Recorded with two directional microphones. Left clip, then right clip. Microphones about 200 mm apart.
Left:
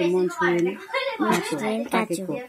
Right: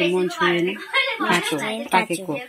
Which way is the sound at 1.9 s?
45° left (ahead or behind).